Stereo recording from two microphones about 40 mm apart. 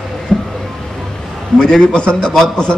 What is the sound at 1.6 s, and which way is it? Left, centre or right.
A man's voice, centre.